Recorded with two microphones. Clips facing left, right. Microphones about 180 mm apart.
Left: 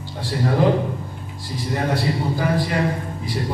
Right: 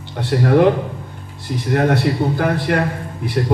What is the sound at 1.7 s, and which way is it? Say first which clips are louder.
A man's voice: right 6 dB; 65° right (ahead or behind).